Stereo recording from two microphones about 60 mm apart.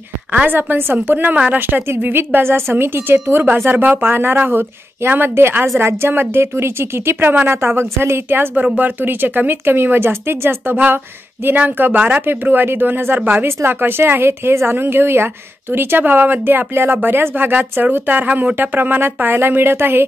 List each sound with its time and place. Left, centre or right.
0.5 s a woman's voice: right